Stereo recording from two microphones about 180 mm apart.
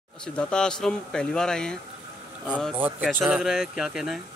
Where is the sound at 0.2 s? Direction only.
5° left (ahead or behind).